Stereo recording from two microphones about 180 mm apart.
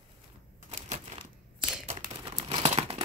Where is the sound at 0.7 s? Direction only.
30° right (ahead or behind).